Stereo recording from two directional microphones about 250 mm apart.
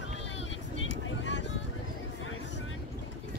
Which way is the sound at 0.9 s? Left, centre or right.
Left.